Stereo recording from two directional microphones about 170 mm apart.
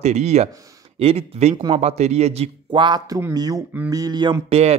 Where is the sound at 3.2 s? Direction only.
20° right (ahead or behind).